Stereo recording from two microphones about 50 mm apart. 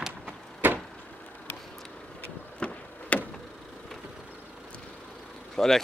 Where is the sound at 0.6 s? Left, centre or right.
Right.